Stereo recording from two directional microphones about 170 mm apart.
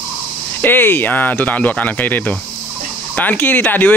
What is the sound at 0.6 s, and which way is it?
Speech, 10° left (ahead or behind).